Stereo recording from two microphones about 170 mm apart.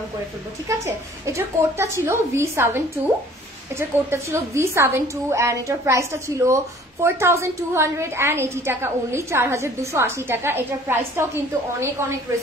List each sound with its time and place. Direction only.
0.7 s a woman's voice: 20° right (ahead or behind)